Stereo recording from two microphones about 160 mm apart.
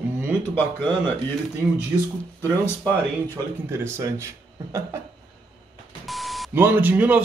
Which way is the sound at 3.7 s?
15° right (ahead or behind).